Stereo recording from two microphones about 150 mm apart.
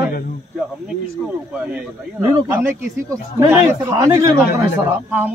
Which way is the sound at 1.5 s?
10° right (ahead or behind).